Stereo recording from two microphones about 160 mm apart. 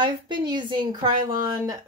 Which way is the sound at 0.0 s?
30° right (ahead or behind).